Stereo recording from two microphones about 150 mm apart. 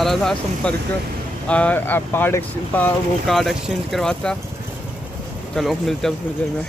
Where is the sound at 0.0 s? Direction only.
5° left (ahead or behind).